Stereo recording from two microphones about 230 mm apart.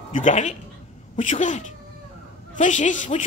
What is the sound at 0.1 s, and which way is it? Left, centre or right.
Speech, left.